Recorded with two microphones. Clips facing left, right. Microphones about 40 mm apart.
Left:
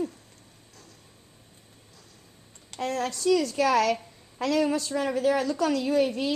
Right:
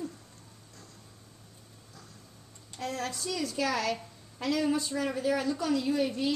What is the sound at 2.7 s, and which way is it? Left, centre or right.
A woman's voice, left.